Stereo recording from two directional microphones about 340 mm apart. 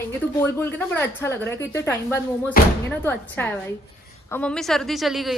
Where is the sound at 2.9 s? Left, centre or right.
Centre.